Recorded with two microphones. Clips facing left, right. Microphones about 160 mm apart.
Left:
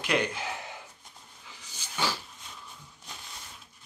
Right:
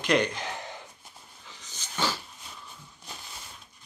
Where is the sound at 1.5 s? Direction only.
10° left (ahead or behind).